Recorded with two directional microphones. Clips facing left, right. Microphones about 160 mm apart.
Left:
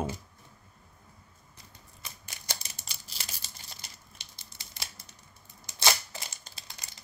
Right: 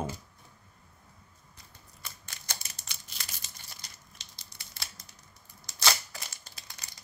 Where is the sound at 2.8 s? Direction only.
35° left (ahead or behind).